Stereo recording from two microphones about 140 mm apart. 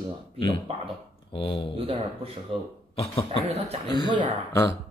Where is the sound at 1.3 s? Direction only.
40° left (ahead or behind).